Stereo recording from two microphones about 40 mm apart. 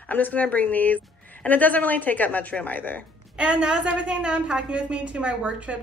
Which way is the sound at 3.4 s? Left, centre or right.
Right.